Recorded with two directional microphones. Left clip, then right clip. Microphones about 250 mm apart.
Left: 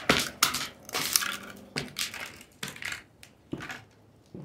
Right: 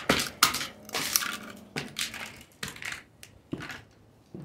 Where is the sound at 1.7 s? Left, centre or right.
Centre.